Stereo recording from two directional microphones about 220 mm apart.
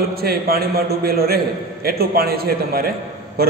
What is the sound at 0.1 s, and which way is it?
A man's voice, 45° right (ahead or behind).